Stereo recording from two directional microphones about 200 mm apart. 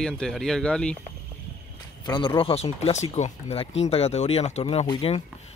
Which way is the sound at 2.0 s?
20° left (ahead or behind).